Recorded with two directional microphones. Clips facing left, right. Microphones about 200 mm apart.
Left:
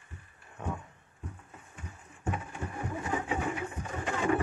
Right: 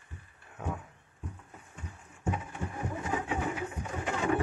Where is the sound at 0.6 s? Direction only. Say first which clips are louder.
Even; 5° right (ahead or behind).